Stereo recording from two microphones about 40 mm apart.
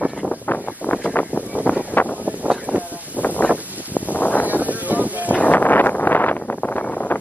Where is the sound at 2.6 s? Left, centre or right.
Right.